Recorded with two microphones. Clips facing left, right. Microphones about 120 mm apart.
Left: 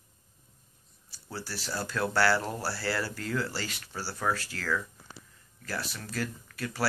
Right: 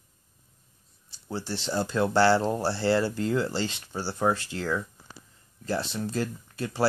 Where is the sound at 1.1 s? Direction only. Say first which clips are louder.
Right 6 dB; 25° right (ahead or behind).